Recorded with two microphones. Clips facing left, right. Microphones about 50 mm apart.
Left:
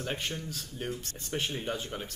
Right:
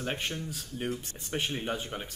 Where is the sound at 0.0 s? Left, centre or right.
Centre.